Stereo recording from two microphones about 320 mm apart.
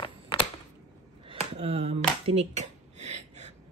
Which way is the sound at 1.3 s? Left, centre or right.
Centre.